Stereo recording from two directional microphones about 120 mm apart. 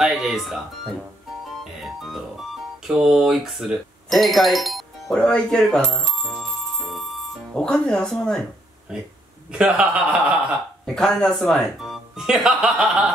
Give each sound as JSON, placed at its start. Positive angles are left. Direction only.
{"t": 0.0, "sound": "speech", "side_deg": 0}
{"t": 1.6, "sound": "music", "side_deg": 0}
{"t": 2.9, "sound": "speech", "side_deg": -5}
{"t": 5.1, "sound": "bicycle bell", "side_deg": 5}
{"t": 8.9, "sound": "a man's voice", "side_deg": -5}
{"t": 11.0, "sound": "speech", "side_deg": 5}